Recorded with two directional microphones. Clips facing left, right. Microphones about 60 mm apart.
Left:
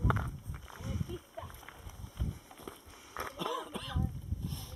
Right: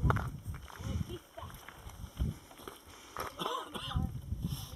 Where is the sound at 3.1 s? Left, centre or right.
Centre.